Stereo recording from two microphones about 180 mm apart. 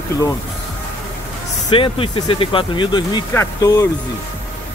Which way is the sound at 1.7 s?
30° left (ahead or behind).